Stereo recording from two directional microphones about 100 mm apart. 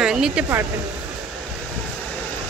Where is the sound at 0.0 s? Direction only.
5° right (ahead or behind).